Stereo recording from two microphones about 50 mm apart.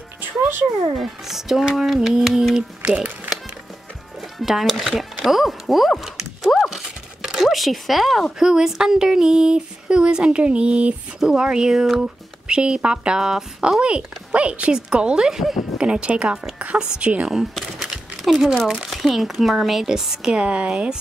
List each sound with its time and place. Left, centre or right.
0.9 s speech: centre
2.5 s speech: centre
4.2 s speech: centre
15.8 s speech: right
16.5 s a sound: right
17.0 s speech: right
18.2 s speech: centre
20.3 s speech: right